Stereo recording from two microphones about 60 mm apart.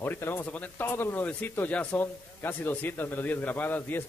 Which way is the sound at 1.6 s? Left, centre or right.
Left.